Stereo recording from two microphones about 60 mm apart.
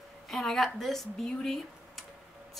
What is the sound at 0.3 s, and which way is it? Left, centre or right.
A woman's voice, centre.